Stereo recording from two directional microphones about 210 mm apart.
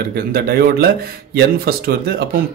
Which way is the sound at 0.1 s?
50° right (ahead or behind).